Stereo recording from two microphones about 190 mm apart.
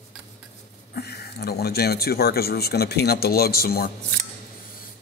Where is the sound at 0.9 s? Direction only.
55° left (ahead or behind).